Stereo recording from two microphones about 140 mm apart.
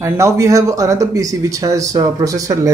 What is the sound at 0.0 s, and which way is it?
Speech, 20° right (ahead or behind).